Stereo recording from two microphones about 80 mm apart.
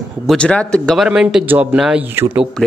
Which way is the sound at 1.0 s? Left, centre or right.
Centre.